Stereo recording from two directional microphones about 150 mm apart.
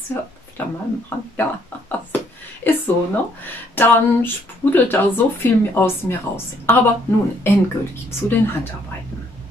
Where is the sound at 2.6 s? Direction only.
15° left (ahead or behind).